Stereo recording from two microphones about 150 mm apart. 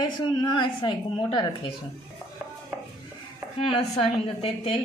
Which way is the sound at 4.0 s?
40° left (ahead or behind).